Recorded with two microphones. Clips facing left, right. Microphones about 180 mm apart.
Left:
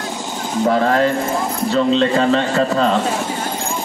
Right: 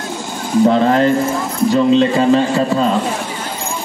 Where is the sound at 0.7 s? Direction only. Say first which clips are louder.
Right 2 dB; 25° right (ahead or behind).